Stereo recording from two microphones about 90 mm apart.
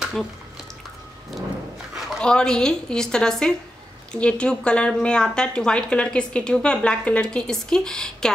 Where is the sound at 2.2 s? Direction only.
10° left (ahead or behind).